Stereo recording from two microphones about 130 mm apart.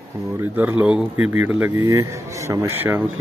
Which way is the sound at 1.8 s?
25° right (ahead or behind).